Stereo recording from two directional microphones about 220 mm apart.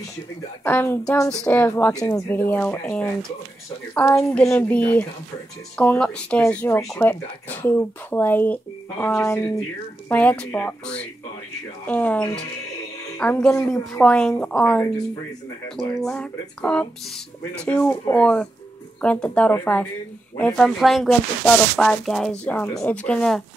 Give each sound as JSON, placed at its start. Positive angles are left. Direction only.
{"t": 0.7, "sound": "speech", "side_deg": 10}